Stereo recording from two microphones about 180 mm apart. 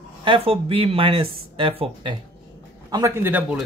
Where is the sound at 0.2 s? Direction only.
30° right (ahead or behind).